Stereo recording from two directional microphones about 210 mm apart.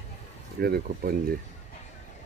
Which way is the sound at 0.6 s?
45° right (ahead or behind).